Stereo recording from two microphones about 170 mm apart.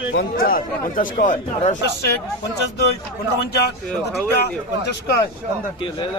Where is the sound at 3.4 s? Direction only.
75° left (ahead or behind).